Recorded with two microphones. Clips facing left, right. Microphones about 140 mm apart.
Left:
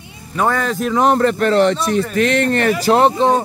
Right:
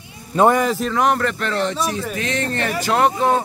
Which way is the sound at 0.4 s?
15° right (ahead or behind).